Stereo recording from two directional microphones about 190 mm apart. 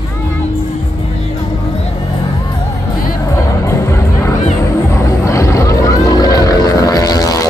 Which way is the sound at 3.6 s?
15° left (ahead or behind).